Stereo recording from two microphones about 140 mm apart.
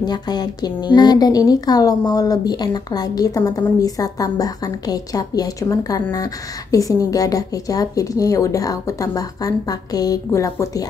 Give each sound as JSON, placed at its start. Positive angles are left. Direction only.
{"t": 0.0, "sound": "speech", "side_deg": 30}